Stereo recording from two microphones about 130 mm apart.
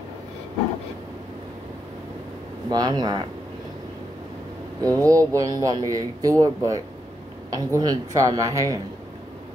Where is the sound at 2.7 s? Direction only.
30° right (ahead or behind).